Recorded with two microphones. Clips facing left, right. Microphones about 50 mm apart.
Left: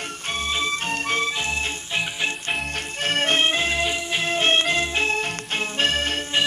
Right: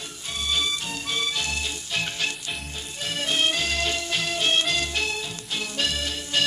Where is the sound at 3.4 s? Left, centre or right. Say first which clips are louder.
Left 3 dB; left.